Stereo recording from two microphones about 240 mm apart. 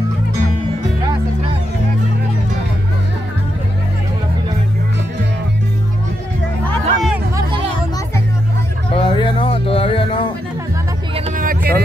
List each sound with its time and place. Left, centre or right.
6.6 s music: centre
8.9 s a sound: centre
11.1 s vehicle: right